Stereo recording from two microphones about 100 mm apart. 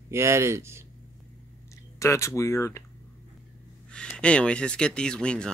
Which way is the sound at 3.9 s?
10° left (ahead or behind).